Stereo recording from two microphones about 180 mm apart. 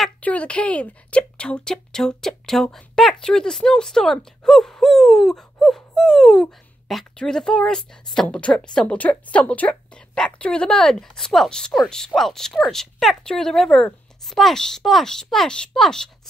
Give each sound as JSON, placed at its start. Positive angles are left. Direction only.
{"t": 0.0, "sound": "a woman's voice", "side_deg": 5}